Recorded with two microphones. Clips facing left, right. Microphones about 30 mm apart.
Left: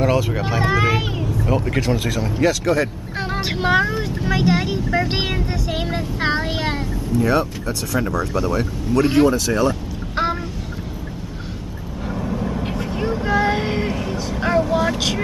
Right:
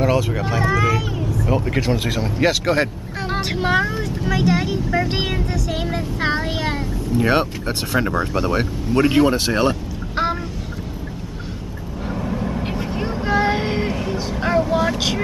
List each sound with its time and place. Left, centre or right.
0.0 s speech: centre
0.6 s vehicle: left
1.5 s speech: centre
2.6 s speech: right
3.5 s speech: centre
7.1 s speech: right
12.1 s vehicle: centre
14.3 s speech: centre